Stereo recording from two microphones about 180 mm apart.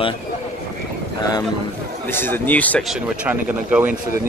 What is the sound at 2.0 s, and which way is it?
Speech, 10° left (ahead or behind).